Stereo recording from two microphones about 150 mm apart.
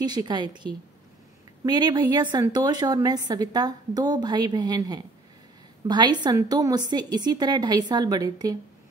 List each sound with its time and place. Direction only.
0.0 s a woman's voice: 30° right (ahead or behind)
1.6 s a woman's voice: 30° right (ahead or behind)